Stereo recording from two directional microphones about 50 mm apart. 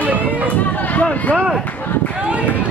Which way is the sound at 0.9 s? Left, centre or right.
Left.